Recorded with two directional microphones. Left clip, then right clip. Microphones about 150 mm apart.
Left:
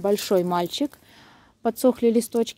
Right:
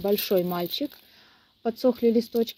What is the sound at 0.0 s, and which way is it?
Speech, 15° left (ahead or behind).